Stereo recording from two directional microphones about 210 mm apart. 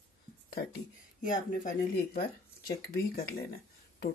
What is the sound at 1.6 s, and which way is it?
Speech, 45° left (ahead or behind).